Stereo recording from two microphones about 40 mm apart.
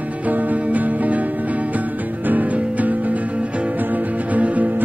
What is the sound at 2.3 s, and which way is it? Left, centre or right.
Music, right.